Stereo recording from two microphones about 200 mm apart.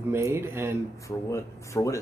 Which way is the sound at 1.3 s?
15° left (ahead or behind).